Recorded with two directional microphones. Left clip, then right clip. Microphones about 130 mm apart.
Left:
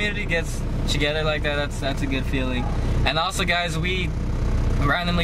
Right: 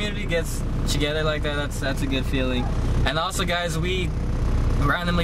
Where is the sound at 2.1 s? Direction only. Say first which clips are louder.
Right 1 dB; 15° right (ahead or behind).